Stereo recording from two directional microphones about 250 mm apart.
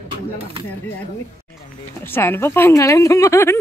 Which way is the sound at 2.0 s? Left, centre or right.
Centre.